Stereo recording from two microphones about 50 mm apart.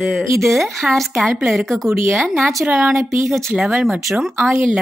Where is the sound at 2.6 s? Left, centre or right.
Right.